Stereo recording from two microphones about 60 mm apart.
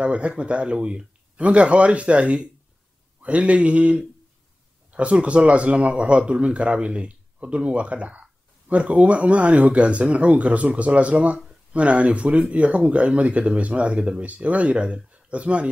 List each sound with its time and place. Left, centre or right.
0.0 s speech: right